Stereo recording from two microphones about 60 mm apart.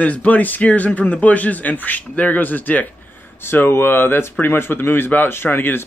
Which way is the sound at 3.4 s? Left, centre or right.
Left.